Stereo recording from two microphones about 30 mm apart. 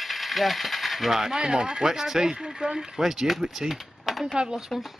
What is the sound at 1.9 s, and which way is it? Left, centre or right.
Speech, centre.